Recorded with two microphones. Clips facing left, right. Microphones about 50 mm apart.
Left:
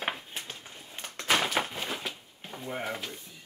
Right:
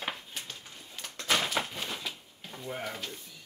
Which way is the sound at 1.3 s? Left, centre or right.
Left.